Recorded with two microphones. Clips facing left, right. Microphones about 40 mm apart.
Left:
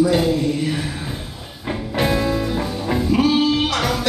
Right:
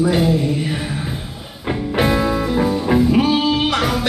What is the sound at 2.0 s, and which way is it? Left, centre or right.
Music, centre.